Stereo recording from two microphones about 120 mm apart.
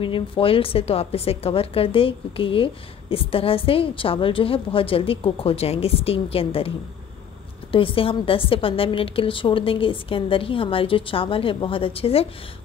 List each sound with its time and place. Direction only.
0.0 s a woman's voice: 45° left (ahead or behind)
7.7 s a woman's voice: 50° left (ahead or behind)